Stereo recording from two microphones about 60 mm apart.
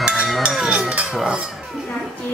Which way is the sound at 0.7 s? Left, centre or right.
Centre.